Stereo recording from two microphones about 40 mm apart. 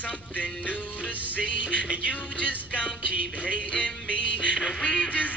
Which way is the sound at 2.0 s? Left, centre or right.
Left.